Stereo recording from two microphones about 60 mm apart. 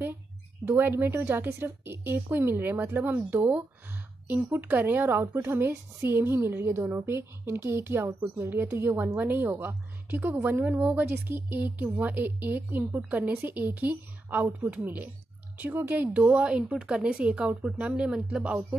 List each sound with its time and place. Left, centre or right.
0.7 s a woman's voice: right
16.1 s speech: centre